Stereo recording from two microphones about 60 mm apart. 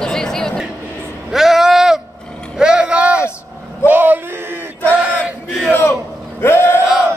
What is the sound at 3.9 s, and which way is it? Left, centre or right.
Male singing, right.